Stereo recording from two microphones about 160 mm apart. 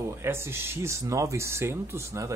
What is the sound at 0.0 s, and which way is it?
Speech, 15° right (ahead or behind).